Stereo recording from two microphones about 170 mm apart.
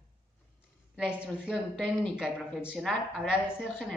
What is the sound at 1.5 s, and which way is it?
A woman's voice, 5° left (ahead or behind).